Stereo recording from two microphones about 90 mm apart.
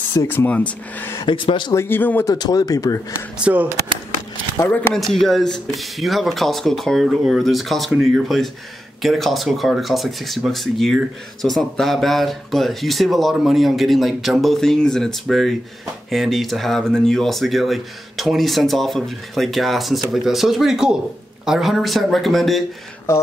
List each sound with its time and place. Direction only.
0.1 s speech: 30° left (ahead or behind)
0.5 s speech: 15° left (ahead or behind)
1.2 s speech: 70° left (ahead or behind)
1.7 s speech: 25° left (ahead or behind)
2.3 s speech: 45° left (ahead or behind)
3.3 s speech: 15° right (ahead or behind)
4.6 s speech: 20° left (ahead or behind)
4.9 s speech: 5° left (ahead or behind)
23.1 s speech: 30° left (ahead or behind)